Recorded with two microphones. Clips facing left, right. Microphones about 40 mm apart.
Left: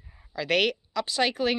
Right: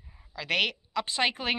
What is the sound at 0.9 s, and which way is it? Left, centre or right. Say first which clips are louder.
Speech: left 1 dB; right.